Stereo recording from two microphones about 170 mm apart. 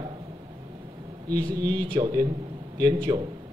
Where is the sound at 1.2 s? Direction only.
20° right (ahead or behind).